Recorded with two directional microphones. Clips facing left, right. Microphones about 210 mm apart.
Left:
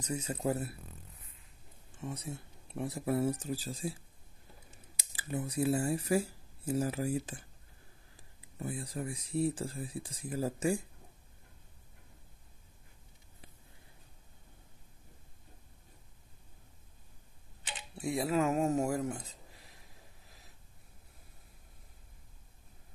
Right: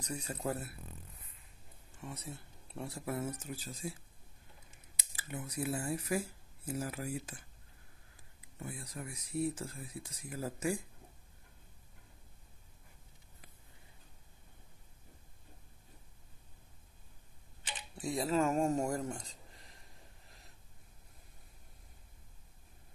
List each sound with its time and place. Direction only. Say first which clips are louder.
0.0 s speech: left 4 dB; 20° left (ahead or behind)
2.0 s speech: left 5 dB; 15° left (ahead or behind)
3.1 s speech: left 8 dB; 30° left (ahead or behind)
5.1 s speech: left 6 dB; 30° left (ahead or behind)
8.5 s speech: left 6 dB; 30° left (ahead or behind)
18.1 s speech: left 1 dB; 10° left (ahead or behind)